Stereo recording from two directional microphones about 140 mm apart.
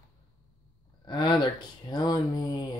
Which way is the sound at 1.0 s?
30° left (ahead or behind).